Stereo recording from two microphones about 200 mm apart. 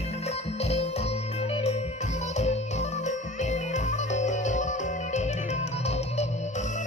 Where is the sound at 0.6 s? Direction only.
30° left (ahead or behind).